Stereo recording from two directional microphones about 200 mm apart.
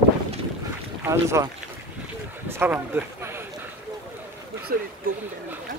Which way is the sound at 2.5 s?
10° right (ahead or behind).